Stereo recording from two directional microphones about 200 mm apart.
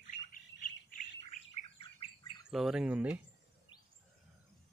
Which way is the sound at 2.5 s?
5° right (ahead or behind).